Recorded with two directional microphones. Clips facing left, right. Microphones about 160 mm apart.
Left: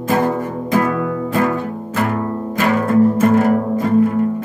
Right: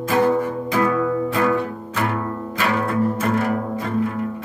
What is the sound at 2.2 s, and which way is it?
Music, 25° left (ahead or behind).